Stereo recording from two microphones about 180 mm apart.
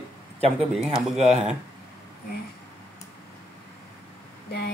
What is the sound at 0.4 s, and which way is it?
Speech, 35° right (ahead or behind).